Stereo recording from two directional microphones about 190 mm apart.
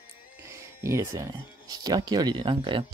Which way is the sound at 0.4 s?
15° right (ahead or behind).